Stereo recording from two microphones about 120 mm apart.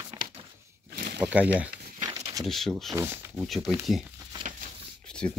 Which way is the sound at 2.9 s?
20° right (ahead or behind).